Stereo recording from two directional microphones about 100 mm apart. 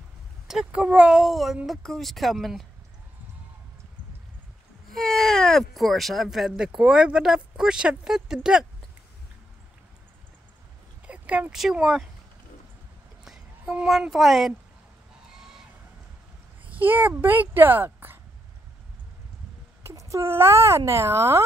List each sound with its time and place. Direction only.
0.5 s speech: 10° right (ahead or behind)
4.9 s speech: 5° left (ahead or behind)
11.1 s a sound: 15° right (ahead or behind)
11.5 s speech: 5° right (ahead or behind)
13.2 s speech: 5° right (ahead or behind)
15.3 s a sound: 5° right (ahead or behind)
16.7 s speech: 20° right (ahead or behind)
19.8 s speech: 30° right (ahead or behind)